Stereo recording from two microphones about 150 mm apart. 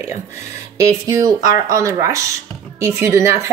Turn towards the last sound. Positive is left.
turn(degrees=-20)  # may be behind; listen again after turning